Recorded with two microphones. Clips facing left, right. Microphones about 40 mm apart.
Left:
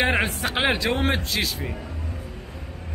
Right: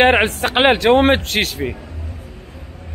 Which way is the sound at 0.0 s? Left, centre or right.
Right.